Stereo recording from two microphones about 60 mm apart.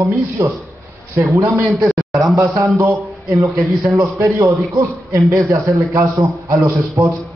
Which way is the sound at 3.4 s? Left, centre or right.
Right.